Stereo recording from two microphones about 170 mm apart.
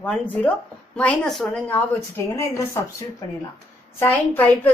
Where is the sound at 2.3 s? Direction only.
15° left (ahead or behind).